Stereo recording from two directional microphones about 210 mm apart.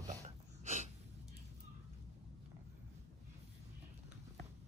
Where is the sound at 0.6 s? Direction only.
35° right (ahead or behind).